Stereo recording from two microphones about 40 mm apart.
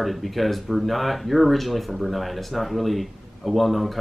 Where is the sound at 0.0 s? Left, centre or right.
Centre.